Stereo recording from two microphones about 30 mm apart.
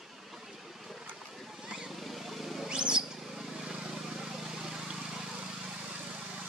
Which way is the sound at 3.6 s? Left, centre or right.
Right.